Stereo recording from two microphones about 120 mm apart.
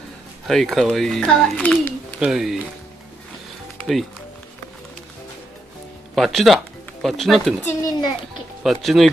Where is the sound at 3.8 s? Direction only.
Centre (ahead or behind).